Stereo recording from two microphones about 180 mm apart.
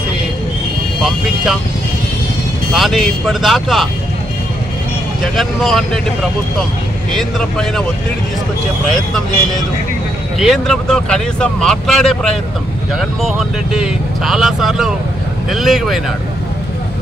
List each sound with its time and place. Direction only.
1.0 s speech: centre (ahead or behind)
2.7 s speech: centre (ahead or behind)
5.2 s speech: centre (ahead or behind)
7.2 s speech: centre (ahead or behind)
10.4 s speech: centre (ahead or behind)